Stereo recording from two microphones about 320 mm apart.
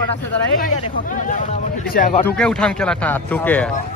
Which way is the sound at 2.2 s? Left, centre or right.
Centre.